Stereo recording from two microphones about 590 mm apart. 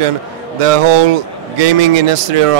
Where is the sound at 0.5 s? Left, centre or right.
Right.